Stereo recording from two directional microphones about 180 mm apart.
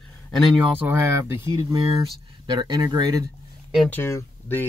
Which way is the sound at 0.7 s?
10° right (ahead or behind).